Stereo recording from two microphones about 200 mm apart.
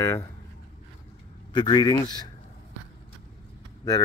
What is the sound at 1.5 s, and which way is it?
Speech, 20° left (ahead or behind).